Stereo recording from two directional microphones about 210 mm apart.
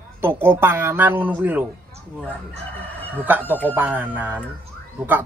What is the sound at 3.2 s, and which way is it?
Speech, 10° right (ahead or behind).